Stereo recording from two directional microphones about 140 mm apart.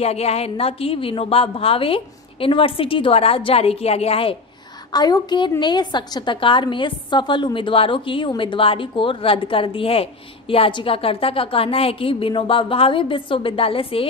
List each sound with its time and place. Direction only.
0.0 s a woman's voice: 50° left (ahead or behind)
4.9 s a woman's voice: 30° left (ahead or behind)